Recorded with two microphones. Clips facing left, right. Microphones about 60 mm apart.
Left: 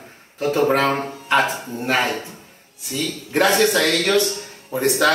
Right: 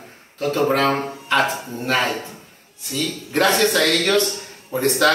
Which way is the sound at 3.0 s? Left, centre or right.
Centre.